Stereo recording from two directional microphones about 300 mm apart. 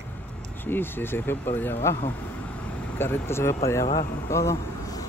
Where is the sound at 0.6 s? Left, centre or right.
Centre.